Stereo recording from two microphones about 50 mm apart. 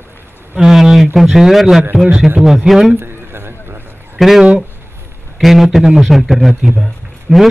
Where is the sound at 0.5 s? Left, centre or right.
Centre.